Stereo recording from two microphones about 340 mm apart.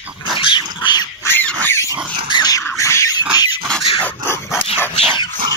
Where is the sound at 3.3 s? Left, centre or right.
Centre.